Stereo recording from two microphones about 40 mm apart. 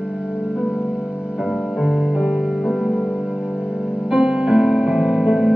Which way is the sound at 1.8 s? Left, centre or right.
Centre.